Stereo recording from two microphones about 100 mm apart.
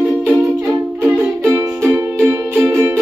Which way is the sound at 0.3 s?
Centre (ahead or behind).